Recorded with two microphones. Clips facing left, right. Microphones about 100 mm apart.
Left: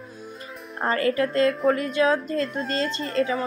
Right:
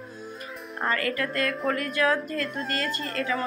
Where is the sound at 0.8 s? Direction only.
30° left (ahead or behind).